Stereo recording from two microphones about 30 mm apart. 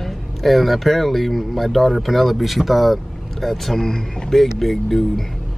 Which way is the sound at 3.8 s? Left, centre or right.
Centre.